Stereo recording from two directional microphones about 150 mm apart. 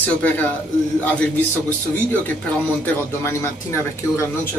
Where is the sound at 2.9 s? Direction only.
15° left (ahead or behind).